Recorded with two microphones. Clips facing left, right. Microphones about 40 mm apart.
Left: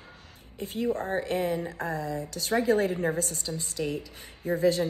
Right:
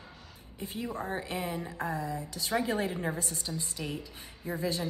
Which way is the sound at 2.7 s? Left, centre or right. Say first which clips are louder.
Left 7 dB; right.